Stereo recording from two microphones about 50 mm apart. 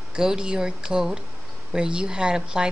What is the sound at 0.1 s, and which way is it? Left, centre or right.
A woman's voice, centre.